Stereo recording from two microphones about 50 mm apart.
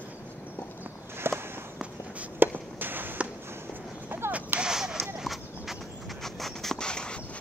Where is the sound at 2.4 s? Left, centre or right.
Right.